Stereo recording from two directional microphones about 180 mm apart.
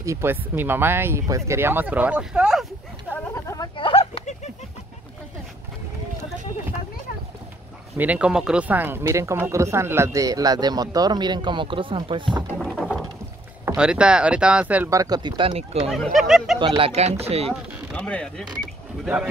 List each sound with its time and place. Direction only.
0.0 s speech: 15° right (ahead or behind)
3.1 s a sound: 15° left (ahead or behind)
3.7 s a sound: 30° left (ahead or behind)
8.0 s speech: 5° right (ahead or behind); by 12.4 s 25° right (ahead or behind)
12.5 s a sound: centre (ahead or behind)
13.7 s speech: 5° right (ahead or behind); by 15.8 s 30° right (ahead or behind)
15.9 s speech: centre (ahead or behind)
16.5 s speech: 30° right (ahead or behind)
17.5 s speech: 5° left (ahead or behind)